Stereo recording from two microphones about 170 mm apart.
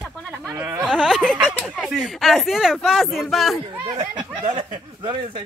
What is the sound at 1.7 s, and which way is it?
Speech, 5° right (ahead or behind).